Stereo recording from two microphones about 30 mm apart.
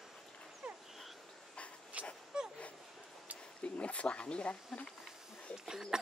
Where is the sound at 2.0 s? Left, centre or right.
Right.